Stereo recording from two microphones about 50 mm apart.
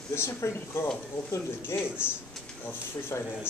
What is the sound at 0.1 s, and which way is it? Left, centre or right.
A man's voice, left.